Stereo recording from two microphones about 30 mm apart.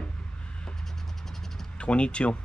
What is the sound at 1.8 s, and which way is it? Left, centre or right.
Speech, left.